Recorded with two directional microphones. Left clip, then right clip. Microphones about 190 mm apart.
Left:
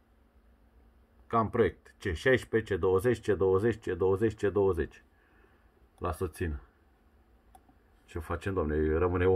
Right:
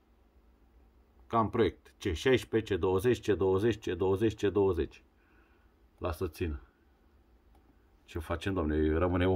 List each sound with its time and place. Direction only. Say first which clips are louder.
1.3 s speech: left 1 dB; 20° right (ahead or behind)
8.1 s speech: even; 20° right (ahead or behind)